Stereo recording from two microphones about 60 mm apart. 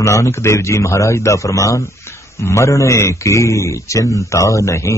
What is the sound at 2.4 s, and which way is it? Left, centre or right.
A man's voice, left.